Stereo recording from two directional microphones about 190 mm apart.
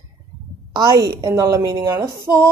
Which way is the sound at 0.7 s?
20° right (ahead or behind).